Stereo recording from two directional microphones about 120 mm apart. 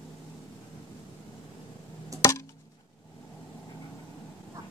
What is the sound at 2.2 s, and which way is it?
Chop, 25° left (ahead or behind).